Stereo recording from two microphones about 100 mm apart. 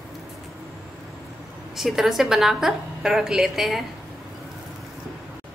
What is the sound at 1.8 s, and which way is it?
A woman's voice, 5° right (ahead or behind).